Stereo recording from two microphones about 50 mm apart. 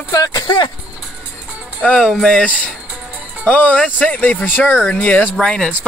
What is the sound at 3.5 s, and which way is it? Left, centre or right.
Speech, left.